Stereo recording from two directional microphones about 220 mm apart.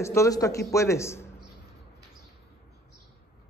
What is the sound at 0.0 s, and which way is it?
Speech, 15° left (ahead or behind).